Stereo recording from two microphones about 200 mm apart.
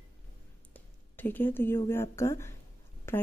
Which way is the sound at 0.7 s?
10° left (ahead or behind).